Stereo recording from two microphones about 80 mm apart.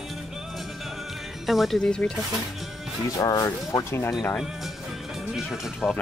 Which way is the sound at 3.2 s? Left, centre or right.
Left.